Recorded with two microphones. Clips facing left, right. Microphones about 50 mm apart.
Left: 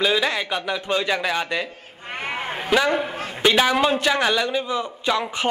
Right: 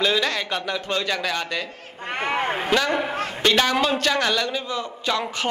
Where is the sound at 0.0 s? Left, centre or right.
Centre.